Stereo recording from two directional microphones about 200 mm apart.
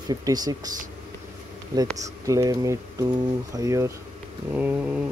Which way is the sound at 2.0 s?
15° right (ahead or behind).